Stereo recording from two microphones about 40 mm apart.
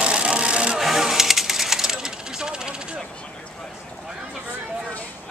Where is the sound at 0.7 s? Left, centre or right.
Centre.